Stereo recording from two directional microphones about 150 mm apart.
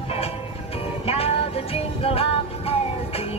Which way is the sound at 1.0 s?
40° left (ahead or behind).